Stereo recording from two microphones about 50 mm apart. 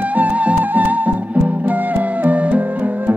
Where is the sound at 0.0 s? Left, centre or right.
Right.